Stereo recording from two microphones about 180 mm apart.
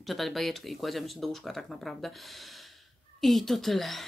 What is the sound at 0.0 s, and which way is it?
A woman's voice, centre (ahead or behind).